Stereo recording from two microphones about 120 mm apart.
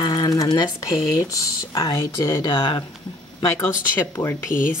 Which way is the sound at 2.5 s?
45° left (ahead or behind).